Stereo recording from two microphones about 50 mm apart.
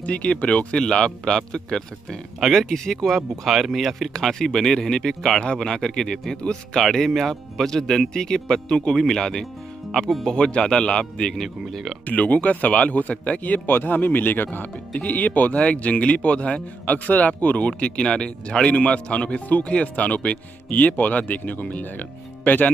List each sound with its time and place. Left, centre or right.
0.0 s speech: left
6.8 s speech: centre
10.3 s speech: centre
12.1 s speech: left
13.7 s speech: left